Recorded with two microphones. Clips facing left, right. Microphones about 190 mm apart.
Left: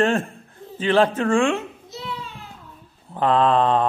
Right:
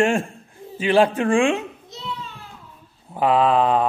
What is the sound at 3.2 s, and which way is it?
Speech, 10° right (ahead or behind).